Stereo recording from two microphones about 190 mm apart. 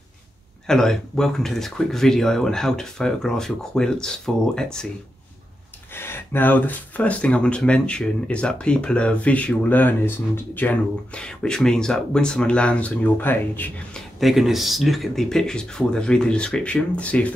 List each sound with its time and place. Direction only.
0.7 s speech: 5° left (ahead or behind)
5.9 s speech: 10° left (ahead or behind)